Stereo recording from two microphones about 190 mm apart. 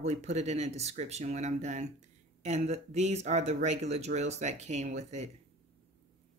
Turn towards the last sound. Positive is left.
turn(degrees=-35)  # may be behind; listen again after turning